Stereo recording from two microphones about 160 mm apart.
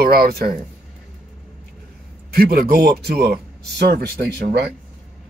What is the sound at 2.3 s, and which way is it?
Speech, 65° right (ahead or behind).